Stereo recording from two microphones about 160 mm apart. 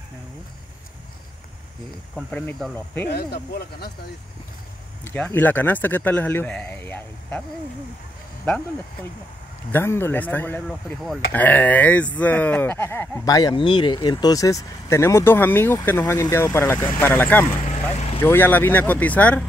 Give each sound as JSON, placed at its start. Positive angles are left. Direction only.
{"t": 2.3, "sound": "speech", "side_deg": 10}
{"t": 3.1, "sound": "speech", "side_deg": 90}
{"t": 5.0, "sound": "speech", "side_deg": 10}
{"t": 9.7, "sound": "speech", "side_deg": 15}
{"t": 10.7, "sound": "speech", "side_deg": 0}
{"t": 11.3, "sound": "speech", "side_deg": 10}
{"t": 13.3, "sound": "speech", "side_deg": 25}
{"t": 17.6, "sound": "vehicle", "side_deg": 40}
{"t": 18.2, "sound": "speech", "side_deg": 15}